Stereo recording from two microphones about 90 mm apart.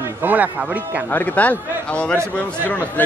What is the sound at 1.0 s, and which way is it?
Speech, 20° left (ahead or behind).